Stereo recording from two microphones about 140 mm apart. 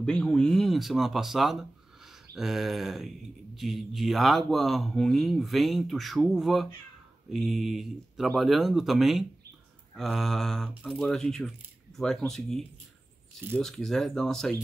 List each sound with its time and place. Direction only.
0.0 s speech: 5° left (ahead or behind)